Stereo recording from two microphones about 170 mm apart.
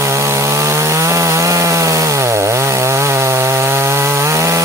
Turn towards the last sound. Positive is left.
turn(degrees=-15)  # may be behind; listen again after turning